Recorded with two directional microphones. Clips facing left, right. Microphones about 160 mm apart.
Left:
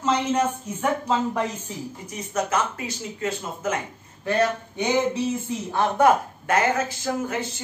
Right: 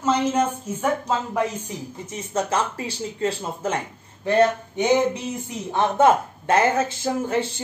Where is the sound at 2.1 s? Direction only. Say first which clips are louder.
Right 1 dB; 30° right (ahead or behind).